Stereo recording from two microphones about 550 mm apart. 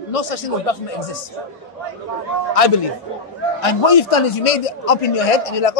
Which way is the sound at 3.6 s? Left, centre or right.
Left.